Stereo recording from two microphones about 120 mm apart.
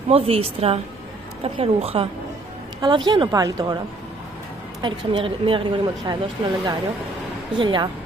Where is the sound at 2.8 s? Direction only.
40° right (ahead or behind).